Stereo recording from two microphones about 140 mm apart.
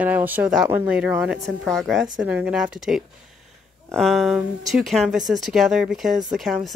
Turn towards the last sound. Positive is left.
turn(degrees=0)  # may be behind; listen again after turning